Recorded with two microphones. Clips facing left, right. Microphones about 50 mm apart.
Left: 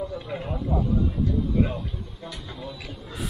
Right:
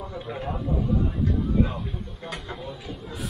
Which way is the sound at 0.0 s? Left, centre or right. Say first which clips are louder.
Left 3 dB; right.